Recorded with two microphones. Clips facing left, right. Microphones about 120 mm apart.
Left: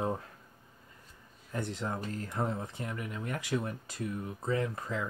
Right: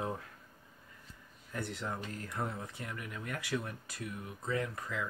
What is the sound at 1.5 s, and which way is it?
Speech, 20° left (ahead or behind).